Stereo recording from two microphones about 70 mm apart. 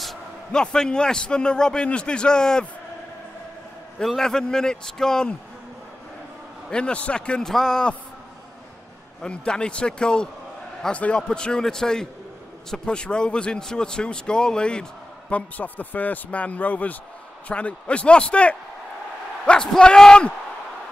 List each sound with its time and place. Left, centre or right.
0.5 s a man's voice: centre
4.0 s a man's voice: centre
6.7 s a man's voice: centre
9.2 s a man's voice: centre
19.4 s a sound: centre
19.7 s a man's voice: centre